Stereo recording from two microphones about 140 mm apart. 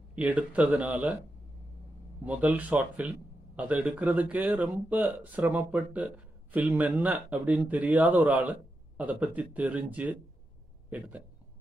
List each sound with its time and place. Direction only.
0.1 s speech: 10° right (ahead or behind)
2.2 s speech: 10° right (ahead or behind)